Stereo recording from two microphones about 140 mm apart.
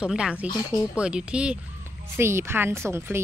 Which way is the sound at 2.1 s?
20° right (ahead or behind).